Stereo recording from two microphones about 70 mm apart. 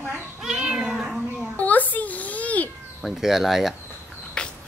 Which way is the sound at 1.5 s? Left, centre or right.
Left.